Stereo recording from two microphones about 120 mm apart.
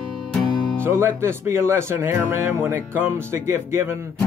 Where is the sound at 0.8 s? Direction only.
20° right (ahead or behind).